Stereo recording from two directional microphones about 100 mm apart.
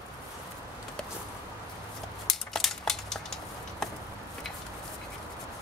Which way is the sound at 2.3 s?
5° left (ahead or behind).